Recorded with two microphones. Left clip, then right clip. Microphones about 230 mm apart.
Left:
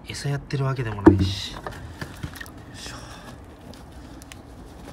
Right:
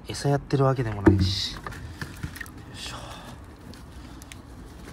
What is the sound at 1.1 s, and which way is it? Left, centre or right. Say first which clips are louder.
Speech: even; left.